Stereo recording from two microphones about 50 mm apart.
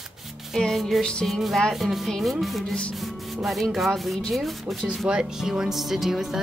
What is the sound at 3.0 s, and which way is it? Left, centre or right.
Music, centre.